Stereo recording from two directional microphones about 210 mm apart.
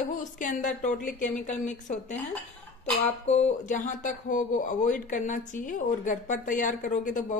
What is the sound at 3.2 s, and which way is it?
Speech, 30° left (ahead or behind).